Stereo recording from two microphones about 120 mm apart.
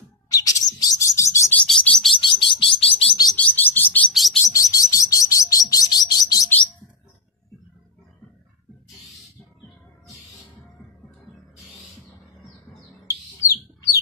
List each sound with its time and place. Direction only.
0.3 s bird: 30° left (ahead or behind)
1.7 s bird: 5° left (ahead or behind)
2.2 s bird: 45° left (ahead or behind)
3.3 s bird: 15° left (ahead or behind)
4.1 s bird: centre (ahead or behind)
4.5 s chirp: 30° left (ahead or behind)
13.4 s bird: 25° left (ahead or behind)